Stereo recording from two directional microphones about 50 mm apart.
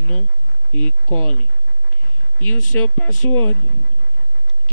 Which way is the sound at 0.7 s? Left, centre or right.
Left.